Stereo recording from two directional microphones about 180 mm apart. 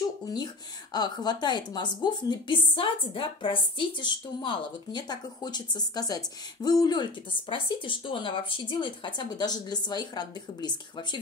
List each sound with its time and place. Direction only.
0.9 s a woman's voice: 25° left (ahead or behind)